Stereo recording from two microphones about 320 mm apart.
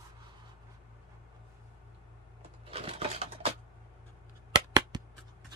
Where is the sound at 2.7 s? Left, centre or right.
Centre.